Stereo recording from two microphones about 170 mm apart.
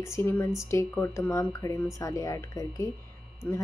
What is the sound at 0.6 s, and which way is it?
A woman's voice, 15° left (ahead or behind).